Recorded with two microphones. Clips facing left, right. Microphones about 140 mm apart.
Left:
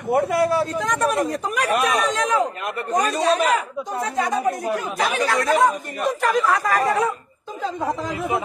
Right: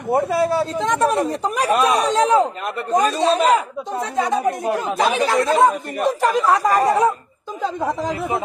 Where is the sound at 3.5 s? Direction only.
25° right (ahead or behind).